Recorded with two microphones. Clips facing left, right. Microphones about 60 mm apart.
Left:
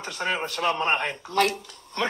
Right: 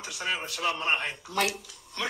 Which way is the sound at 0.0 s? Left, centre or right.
Left.